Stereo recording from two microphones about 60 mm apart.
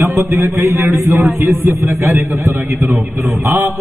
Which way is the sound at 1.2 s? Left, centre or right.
Right.